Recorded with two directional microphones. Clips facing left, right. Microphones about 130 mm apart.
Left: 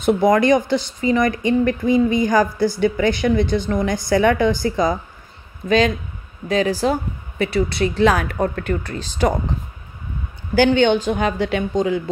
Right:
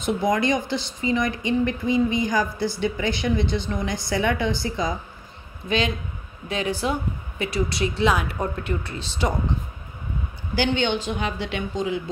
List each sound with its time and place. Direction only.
0.0 s speech: 55° left (ahead or behind)
10.5 s speech: 45° left (ahead or behind)